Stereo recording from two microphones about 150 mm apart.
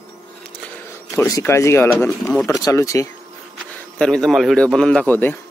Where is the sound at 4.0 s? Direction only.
5° left (ahead or behind).